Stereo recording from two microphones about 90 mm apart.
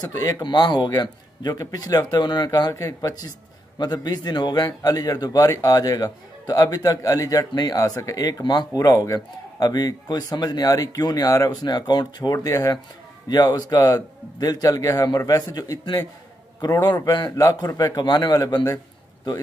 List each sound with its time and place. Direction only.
0.0 s a man's voice: 45° left (ahead or behind)
0.4 s a man's voice: 55° left (ahead or behind)
2.7 s a man's voice: 35° left (ahead or behind)